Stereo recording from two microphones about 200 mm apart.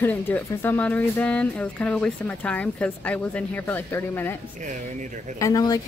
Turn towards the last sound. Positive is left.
turn(degrees=20)  # may be behind; listen again after turning